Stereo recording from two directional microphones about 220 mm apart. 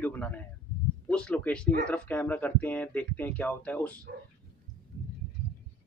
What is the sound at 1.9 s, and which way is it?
Speech, 5° left (ahead or behind).